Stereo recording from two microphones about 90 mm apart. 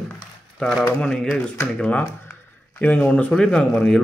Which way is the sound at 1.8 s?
15° left (ahead or behind).